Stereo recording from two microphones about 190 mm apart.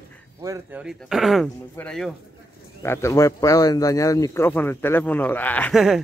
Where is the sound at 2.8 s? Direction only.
15° left (ahead or behind).